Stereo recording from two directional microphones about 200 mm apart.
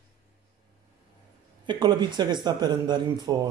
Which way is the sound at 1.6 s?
20° right (ahead or behind).